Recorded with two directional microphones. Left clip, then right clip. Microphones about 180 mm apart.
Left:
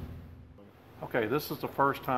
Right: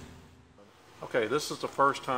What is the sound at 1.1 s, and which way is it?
Speech, 10° right (ahead or behind).